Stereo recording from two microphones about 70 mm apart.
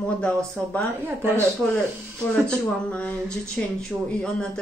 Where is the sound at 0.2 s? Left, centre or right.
Centre.